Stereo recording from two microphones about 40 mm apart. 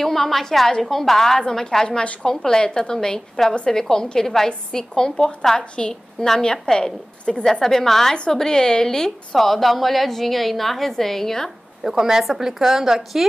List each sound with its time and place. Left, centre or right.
0.0 s a woman's voice: centre
1.9 s a woman's voice: left
7.6 s a woman's voice: centre
11.8 s a woman's voice: centre